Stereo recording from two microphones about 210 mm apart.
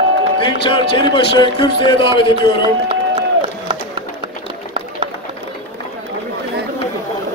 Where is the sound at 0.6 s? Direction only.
25° left (ahead or behind).